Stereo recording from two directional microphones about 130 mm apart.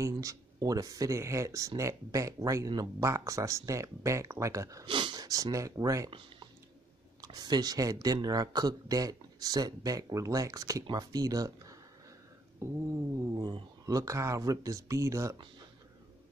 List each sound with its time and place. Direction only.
0.0 s speech: 25° right (ahead or behind)
4.8 s speech: 40° right (ahead or behind)
6.0 s a sound: 40° right (ahead or behind)
7.2 s speech: 30° right (ahead or behind)
13.3 s speech: 35° right (ahead or behind)